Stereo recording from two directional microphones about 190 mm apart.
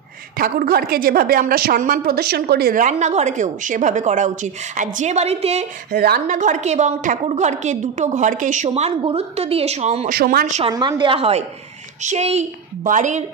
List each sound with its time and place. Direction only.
0.4 s a woman's voice: 55° right (ahead or behind); by 5.9 s 35° right (ahead or behind)
5.9 s a woman's voice: 55° right (ahead or behind); by 10.1 s 35° right (ahead or behind)
10.1 s a woman's voice: 50° right (ahead or behind)
10.6 s a woman's voice: 20° right (ahead or behind); by 13.2 s 40° right (ahead or behind)